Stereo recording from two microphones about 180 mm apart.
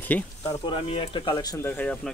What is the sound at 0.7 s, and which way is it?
Speech, 30° left (ahead or behind).